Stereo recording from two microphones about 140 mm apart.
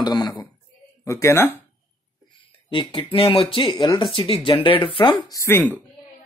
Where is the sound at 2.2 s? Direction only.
30° left (ahead or behind).